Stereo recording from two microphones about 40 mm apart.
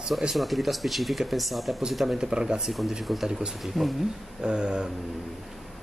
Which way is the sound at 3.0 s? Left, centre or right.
Centre.